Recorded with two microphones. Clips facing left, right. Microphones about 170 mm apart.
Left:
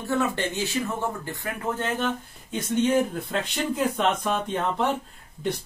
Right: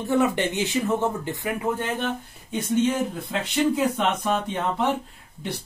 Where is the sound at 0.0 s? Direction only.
15° right (ahead or behind).